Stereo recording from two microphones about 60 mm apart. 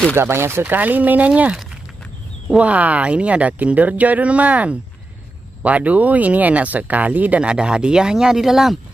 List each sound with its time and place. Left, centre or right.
0.1 s speech: right
0.7 s speech: right
2.5 s speech: right; by 8.7 s centre